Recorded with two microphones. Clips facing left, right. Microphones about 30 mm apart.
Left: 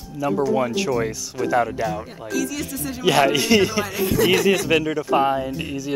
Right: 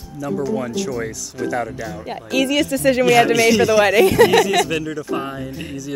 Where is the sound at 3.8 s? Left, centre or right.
Right.